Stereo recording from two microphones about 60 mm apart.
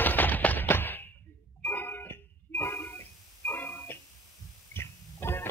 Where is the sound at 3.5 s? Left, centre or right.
Left.